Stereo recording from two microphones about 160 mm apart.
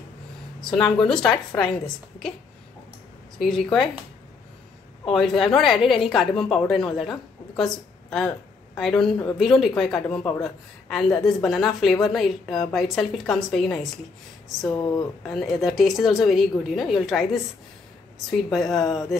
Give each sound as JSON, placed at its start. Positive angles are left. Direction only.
{"t": 0.6, "sound": "a woman's voice", "side_deg": 5}
{"t": 3.3, "sound": "a woman's voice", "side_deg": 0}
{"t": 5.1, "sound": "a woman's voice", "side_deg": 0}
{"t": 14.7, "sound": "speech", "side_deg": 25}
{"t": 15.2, "sound": "a woman's voice", "side_deg": 0}
{"t": 18.5, "sound": "a woman's voice", "side_deg": 0}